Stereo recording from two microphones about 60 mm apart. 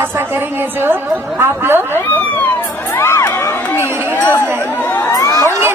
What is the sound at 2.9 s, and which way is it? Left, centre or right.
Crowd, left.